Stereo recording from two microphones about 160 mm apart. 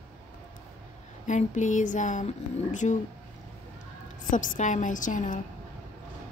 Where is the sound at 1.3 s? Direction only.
50° left (ahead or behind).